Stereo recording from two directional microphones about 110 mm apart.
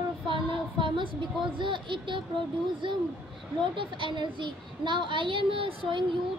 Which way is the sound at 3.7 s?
50° right (ahead or behind).